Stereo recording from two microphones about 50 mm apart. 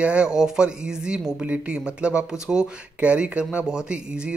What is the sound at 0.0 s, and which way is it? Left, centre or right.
Speech, right.